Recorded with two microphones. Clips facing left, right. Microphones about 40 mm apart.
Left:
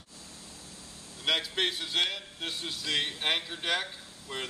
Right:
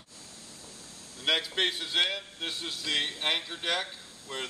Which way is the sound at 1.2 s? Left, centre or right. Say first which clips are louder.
Right 1 dB; centre.